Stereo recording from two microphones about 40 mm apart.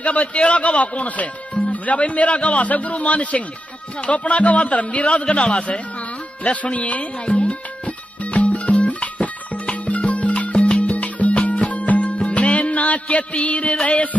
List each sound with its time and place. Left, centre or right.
0.0 s a man's voice: left
6.4 s music: left
13.8 s a man's voice: left